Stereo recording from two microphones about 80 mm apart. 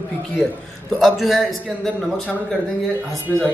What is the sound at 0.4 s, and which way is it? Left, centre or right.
Speech, centre.